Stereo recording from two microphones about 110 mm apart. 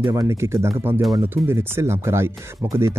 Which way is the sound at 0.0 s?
25° right (ahead or behind).